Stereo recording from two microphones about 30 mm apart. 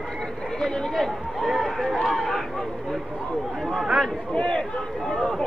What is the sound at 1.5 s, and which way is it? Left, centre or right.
Run, centre.